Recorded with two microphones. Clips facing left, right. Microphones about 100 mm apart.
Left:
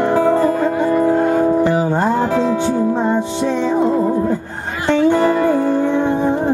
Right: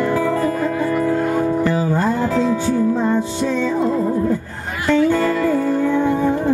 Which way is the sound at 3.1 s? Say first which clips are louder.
Left 2 dB; 55° left (ahead or behind).